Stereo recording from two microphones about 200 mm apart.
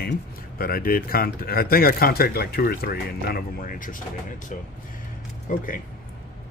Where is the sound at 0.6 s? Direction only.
50° left (ahead or behind).